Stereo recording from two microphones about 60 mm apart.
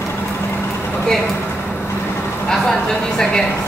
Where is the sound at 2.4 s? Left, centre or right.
Centre.